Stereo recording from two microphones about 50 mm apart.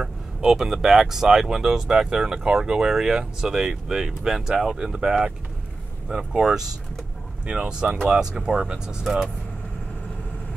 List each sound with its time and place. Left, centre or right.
0.5 s speech: centre